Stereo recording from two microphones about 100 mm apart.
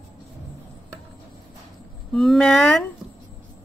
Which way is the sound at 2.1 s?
5° left (ahead or behind).